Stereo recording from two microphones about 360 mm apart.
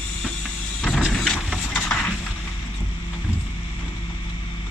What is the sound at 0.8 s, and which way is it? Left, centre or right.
Music, centre.